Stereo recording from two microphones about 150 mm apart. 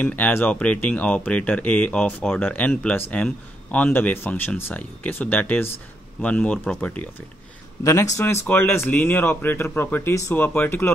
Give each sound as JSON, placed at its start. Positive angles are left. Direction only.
{"t": 0.0, "sound": "speech", "side_deg": 10}
{"t": 7.8, "sound": "speech", "side_deg": 20}